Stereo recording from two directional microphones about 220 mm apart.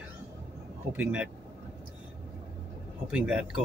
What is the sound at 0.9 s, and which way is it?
Speech, 5° right (ahead or behind).